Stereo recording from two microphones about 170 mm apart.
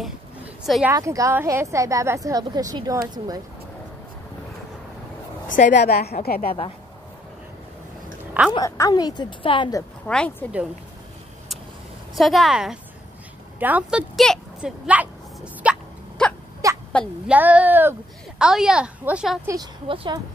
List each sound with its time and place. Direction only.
0.8 s a woman's voice: 20° right (ahead or behind)
5.7 s a woman's voice: 75° left (ahead or behind)
8.5 s speech: 20° left (ahead or behind)
10.0 s speech: 5° left (ahead or behind)
12.2 s a woman's voice: centre (ahead or behind)
14.9 s a sound: 10° right (ahead or behind)
16.2 s a sound: 5° left (ahead or behind)
16.6 s a sound: 20° right (ahead or behind)
17.3 s a woman's voice: 10° right (ahead or behind)
19.4 s a woman's voice: 20° right (ahead or behind)